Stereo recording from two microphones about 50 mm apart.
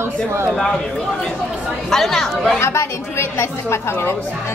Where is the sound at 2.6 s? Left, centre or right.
Left.